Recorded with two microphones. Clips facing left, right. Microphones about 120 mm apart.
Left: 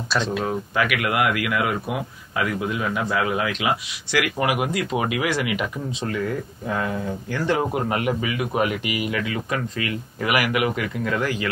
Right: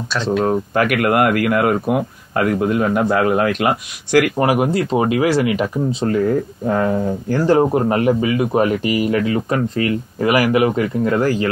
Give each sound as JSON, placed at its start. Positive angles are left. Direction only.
{"t": 0.1, "sound": "speech", "side_deg": 0}
{"t": 0.4, "sound": "speech", "side_deg": -50}